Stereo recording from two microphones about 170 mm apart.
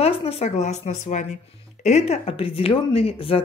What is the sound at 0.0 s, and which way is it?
Speech, 35° left (ahead or behind).